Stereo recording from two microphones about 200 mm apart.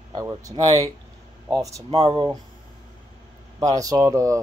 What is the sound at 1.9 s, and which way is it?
Speech, 25° right (ahead or behind).